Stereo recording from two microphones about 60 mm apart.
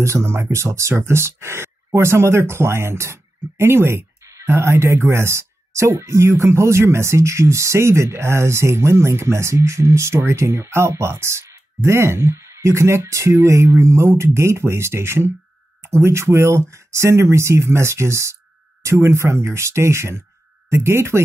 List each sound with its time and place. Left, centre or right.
0.0 s speech: right